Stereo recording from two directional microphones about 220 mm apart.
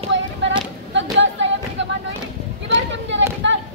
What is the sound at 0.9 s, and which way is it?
Thump, 55° right (ahead or behind).